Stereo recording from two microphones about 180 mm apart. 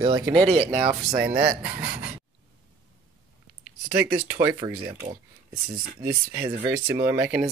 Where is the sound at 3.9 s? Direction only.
15° right (ahead or behind).